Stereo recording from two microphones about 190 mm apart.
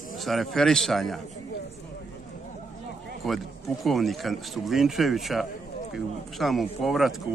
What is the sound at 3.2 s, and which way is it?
Speech, centre (ahead or behind).